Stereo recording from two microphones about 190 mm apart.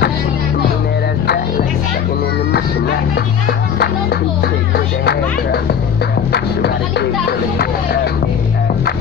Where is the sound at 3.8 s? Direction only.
55° left (ahead or behind).